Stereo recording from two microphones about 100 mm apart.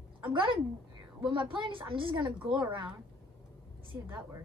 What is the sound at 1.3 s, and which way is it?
Speech, 55° right (ahead or behind).